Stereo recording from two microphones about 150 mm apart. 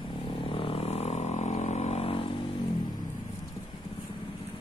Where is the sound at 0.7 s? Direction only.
45° left (ahead or behind).